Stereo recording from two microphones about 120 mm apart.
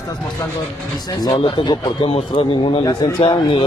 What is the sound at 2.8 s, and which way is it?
Speech, 30° left (ahead or behind).